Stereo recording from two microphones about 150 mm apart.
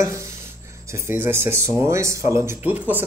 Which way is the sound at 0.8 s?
15° right (ahead or behind).